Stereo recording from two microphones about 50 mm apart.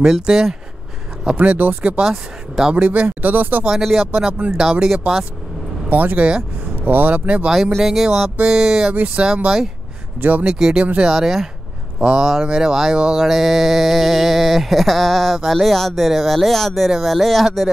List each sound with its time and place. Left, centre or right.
0.0 s speech: centre
1.3 s speech: right
2.0 s speech: centre
2.7 s speech: right
3.7 s speech: centre
5.9 s speech: right
7.8 s speech: centre
8.9 s speech: right; by 11.4 s centre
12.0 s speech: centre